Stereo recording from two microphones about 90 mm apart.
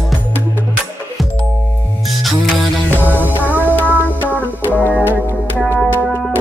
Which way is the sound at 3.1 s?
20° right (ahead or behind).